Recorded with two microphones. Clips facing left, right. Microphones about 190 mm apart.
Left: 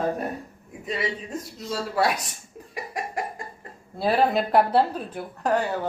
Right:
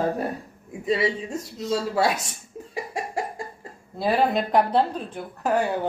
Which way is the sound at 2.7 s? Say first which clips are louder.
Right 2 dB; 25° right (ahead or behind).